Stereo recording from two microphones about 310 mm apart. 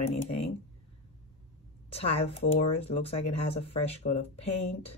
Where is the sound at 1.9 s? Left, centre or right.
Centre.